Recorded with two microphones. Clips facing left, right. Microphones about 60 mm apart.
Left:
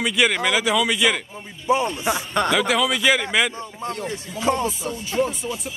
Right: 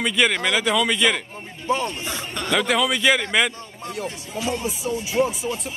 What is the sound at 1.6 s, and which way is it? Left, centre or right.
Speech, centre.